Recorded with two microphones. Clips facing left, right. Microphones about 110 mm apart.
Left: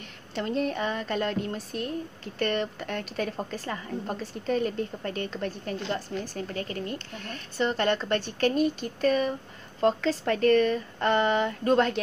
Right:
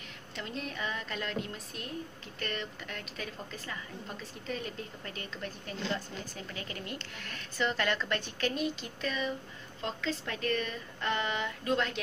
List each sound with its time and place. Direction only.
0.4 s speech: 45° left (ahead or behind)
2.3 s speech: 55° left (ahead or behind)
3.2 s a woman's voice: 40° left (ahead or behind)
3.6 s a woman's voice: 50° left (ahead or behind)